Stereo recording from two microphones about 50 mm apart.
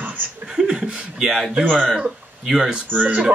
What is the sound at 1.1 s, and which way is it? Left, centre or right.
Speech, centre.